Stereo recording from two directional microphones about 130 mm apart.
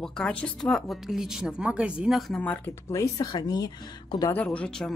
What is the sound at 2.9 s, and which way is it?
Speech, 30° left (ahead or behind).